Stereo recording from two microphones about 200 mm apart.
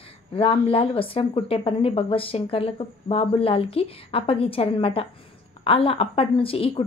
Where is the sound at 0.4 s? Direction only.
30° left (ahead or behind).